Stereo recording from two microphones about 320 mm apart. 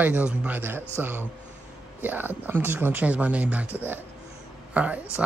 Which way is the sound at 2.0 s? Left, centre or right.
Centre.